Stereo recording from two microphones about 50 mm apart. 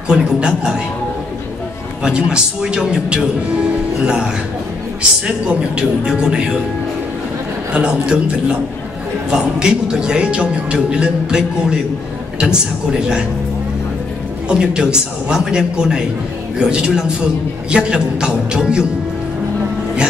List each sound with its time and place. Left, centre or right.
0.1 s speech: centre
2.0 s speech: centre
7.7 s a man's voice: right
14.5 s speech: centre